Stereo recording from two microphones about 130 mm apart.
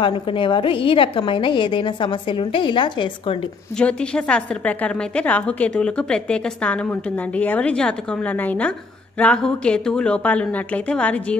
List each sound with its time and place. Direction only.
0.0 s a woman's voice: 40° left (ahead or behind)
3.7 s a woman's voice: 5° left (ahead or behind)